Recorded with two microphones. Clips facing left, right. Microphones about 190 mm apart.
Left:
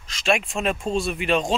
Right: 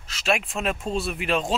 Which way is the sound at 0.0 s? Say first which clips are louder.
Left 2 dB; 5° right (ahead or behind).